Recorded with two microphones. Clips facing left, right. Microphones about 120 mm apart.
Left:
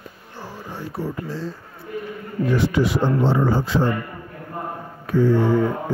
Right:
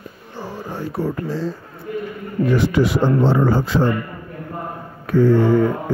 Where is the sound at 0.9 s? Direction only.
80° right.